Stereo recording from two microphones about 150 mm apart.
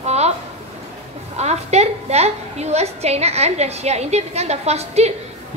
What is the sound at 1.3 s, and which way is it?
A woman's voice, 45° right (ahead or behind).